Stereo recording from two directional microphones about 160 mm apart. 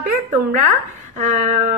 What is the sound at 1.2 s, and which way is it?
Speech, 50° right (ahead or behind).